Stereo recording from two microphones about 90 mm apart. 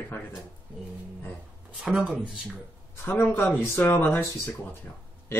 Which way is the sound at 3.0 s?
20° left (ahead or behind).